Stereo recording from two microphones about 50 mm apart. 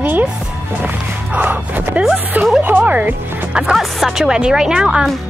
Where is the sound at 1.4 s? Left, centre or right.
Right.